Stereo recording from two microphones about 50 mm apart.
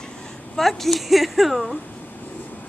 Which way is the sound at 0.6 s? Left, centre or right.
Centre.